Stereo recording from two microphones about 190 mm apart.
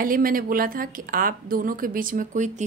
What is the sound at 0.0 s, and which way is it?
A woman's voice, 45° right (ahead or behind).